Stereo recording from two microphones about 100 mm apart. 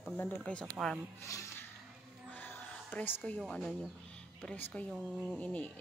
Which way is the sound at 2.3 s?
15° left (ahead or behind).